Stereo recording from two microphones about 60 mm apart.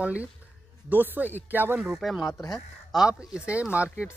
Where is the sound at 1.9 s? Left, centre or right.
Centre.